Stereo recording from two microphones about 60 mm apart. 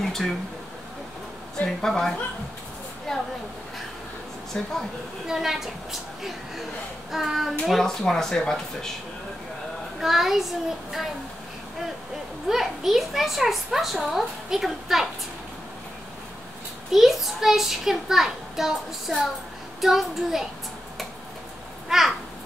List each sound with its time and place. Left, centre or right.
0.0 s a sound: centre
1.8 s a woman's voice: centre
4.5 s speech: left
5.2 s a child's voice: centre
9.9 s a child's voice: centre
12.4 s a child's voice: centre
16.9 s a child's voice: centre
21.8 s a sound: centre